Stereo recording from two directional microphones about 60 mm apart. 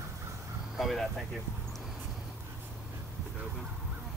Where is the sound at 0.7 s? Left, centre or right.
Centre.